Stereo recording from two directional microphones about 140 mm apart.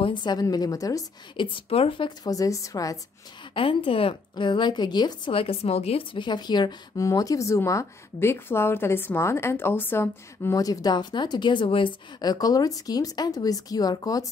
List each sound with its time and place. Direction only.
0.0 s a woman's voice: 35° left (ahead or behind)
1.4 s a woman's voice: 40° left (ahead or behind); by 3.0 s 25° left (ahead or behind)
3.5 s a woman's voice: 40° left (ahead or behind)